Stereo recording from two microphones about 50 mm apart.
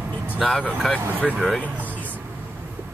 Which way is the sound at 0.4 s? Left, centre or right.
Centre.